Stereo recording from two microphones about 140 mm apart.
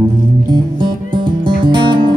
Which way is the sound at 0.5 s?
35° right (ahead or behind).